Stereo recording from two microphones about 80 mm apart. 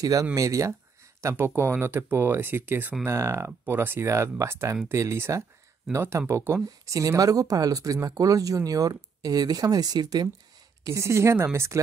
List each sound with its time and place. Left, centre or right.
0.0 s speech: right
1.2 s speech: right
3.1 s speech: right
7.0 s speech: right
10.9 s speech: right